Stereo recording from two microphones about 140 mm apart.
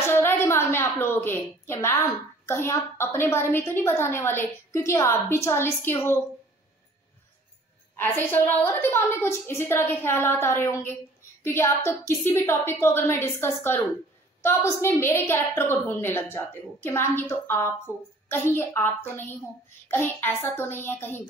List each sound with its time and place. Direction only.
0.0 s a sound: 15° left (ahead or behind)
2.4 s a woman's voice: 20° left (ahead or behind)
7.9 s a woman's voice: 15° left (ahead or behind)